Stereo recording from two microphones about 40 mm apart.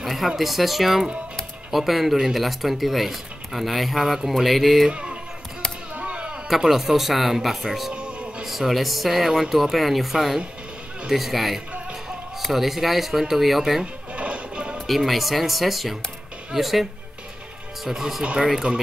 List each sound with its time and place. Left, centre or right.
0.0 s a sound: centre
0.4 s speech: centre
2.4 s speech: centre
4.8 s speech: right
5.9 s a sound: right
6.5 s speech: centre
7.9 s music: right
8.5 s speech: centre
14.1 s music: right
14.9 s speech: centre
17.8 s speech: centre
18.2 s speech: right